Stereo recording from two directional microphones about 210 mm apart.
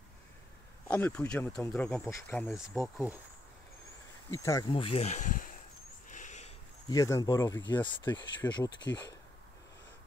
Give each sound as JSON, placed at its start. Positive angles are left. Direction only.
{"t": 0.8, "sound": "speech", "side_deg": 5}
{"t": 4.3, "sound": "speech", "side_deg": 15}
{"t": 6.0, "sound": "a sound", "side_deg": 35}
{"t": 6.9, "sound": "speech", "side_deg": 15}